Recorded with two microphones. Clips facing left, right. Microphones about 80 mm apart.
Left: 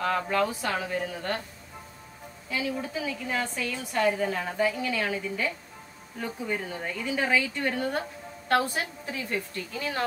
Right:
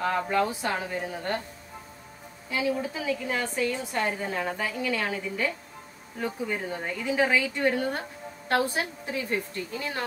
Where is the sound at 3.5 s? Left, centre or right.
Right.